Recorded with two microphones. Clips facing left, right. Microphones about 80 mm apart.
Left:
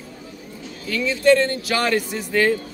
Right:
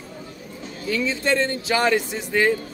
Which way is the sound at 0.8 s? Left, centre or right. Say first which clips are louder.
Left 6 dB; right.